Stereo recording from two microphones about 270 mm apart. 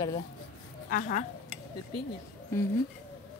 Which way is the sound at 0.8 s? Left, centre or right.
Left.